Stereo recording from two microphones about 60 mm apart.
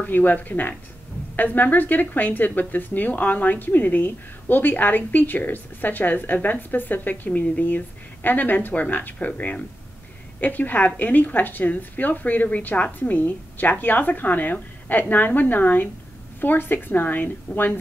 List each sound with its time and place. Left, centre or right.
0.0 s a woman's voice: left